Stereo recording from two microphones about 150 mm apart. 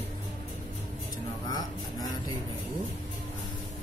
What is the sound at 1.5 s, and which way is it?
Speech, 25° left (ahead or behind).